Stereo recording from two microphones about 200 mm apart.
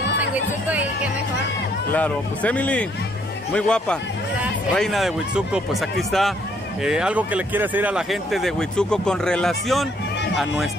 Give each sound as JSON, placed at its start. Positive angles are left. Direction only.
{"t": 0.3, "sound": "speech", "side_deg": -5}
{"t": 1.9, "sound": "speech", "side_deg": 5}